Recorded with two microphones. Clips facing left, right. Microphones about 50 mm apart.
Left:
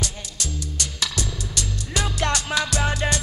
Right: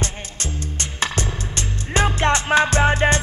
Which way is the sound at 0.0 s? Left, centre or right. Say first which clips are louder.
Right 3 dB; right.